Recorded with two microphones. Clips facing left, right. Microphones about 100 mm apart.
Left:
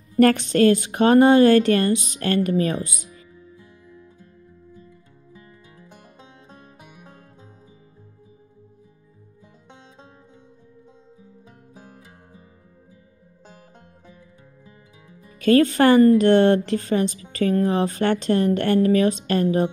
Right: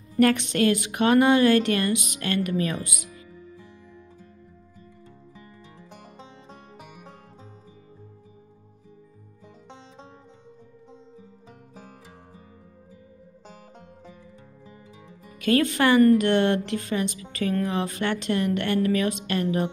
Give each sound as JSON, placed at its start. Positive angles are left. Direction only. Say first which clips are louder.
{"t": 0.2, "sound": "a woman's voice", "louder": "left 5 dB", "side_deg": 40}
{"t": 15.3, "sound": "a woman's voice", "louder": "left 6 dB", "side_deg": 35}